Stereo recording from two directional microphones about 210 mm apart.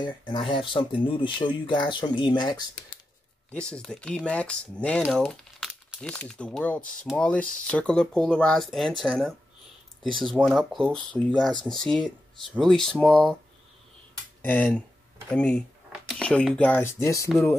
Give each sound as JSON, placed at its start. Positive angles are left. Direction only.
{"t": 0.3, "sound": "speech", "side_deg": 25}
{"t": 3.5, "sound": "speech", "side_deg": 5}
{"t": 14.4, "sound": "speech", "side_deg": 10}
{"t": 17.3, "sound": "speech", "side_deg": 0}